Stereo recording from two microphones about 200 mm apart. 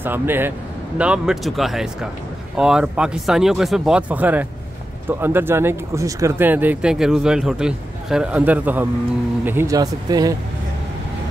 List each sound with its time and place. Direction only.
0.0 s speech: 10° right (ahead or behind)